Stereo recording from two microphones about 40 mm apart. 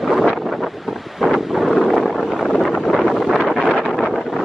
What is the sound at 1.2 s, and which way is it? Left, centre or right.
Wind noise, centre.